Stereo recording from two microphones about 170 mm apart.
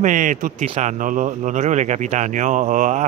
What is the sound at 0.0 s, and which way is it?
Speech, 50° right (ahead or behind).